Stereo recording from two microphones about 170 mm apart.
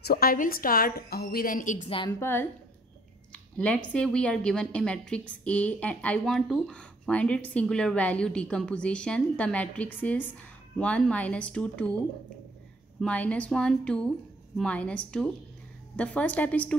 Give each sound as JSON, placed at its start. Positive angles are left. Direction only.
{"t": 0.0, "sound": "a woman's voice", "side_deg": 60}
{"t": 1.9, "sound": "a woman's voice", "side_deg": 30}
{"t": 2.1, "sound": "a woman's voice", "side_deg": 15}
{"t": 3.5, "sound": "a woman's voice", "side_deg": 5}
{"t": 13.0, "sound": "a woman's voice", "side_deg": 10}